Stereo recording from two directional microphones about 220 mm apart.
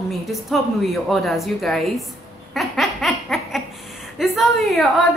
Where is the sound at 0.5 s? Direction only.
Centre (ahead or behind).